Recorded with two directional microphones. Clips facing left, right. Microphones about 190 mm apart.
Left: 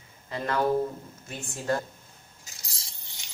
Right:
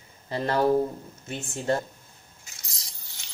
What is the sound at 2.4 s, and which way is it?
Keys jangling, 30° left (ahead or behind).